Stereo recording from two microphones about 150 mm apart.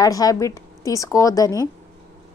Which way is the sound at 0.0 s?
25° left (ahead or behind).